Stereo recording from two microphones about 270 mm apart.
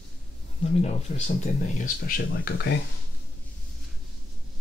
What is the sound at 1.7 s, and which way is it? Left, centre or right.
Speech, left.